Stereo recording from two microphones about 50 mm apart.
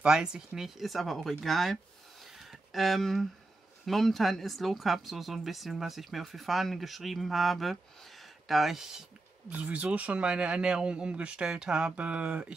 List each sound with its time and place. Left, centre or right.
0.0 s speech: centre
0.7 s speech: centre
9.5 s speech: right